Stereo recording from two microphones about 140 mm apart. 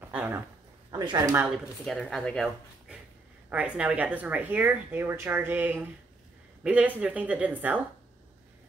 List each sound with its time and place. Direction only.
0.0 s a sound: 10° right (ahead or behind)
0.9 s speech: 30° right (ahead or behind)
1.9 s speech: 5° left (ahead or behind)
3.4 s speech: 10° right (ahead or behind)